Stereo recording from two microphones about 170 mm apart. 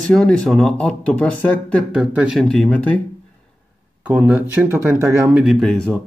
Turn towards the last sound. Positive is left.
turn(degrees=5)  # may be behind; listen again after turning